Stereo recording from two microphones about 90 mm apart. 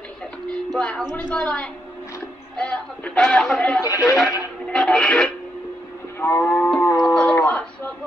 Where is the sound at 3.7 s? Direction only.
35° left (ahead or behind).